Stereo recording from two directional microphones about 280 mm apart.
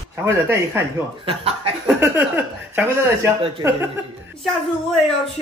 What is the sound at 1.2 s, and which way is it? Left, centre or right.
Speech, right.